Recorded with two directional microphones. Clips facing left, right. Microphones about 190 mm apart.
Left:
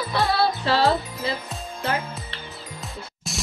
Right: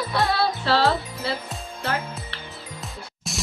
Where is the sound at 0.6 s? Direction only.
15° left (ahead or behind).